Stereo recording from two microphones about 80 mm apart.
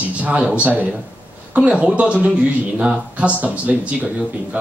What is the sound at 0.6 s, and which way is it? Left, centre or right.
Speech, centre.